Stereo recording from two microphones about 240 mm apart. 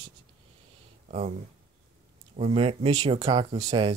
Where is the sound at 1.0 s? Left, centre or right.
Right.